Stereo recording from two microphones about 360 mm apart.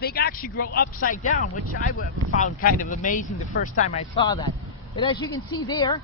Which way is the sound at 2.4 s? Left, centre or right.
Left.